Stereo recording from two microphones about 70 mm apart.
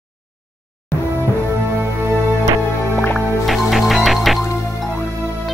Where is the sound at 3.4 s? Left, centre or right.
Centre.